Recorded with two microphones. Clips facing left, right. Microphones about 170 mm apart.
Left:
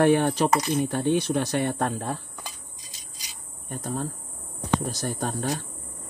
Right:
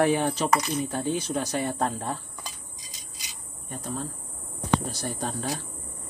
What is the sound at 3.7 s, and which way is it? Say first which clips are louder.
Speech: left 3 dB; 45° left (ahead or behind).